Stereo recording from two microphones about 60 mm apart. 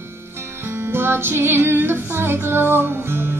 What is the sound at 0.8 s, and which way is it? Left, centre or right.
Music, right.